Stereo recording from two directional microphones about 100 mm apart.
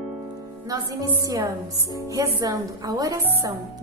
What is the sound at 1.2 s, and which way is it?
A woman's voice, 35° right (ahead or behind).